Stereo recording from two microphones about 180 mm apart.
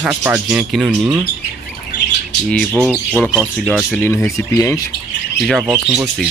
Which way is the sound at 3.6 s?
5° left (ahead or behind).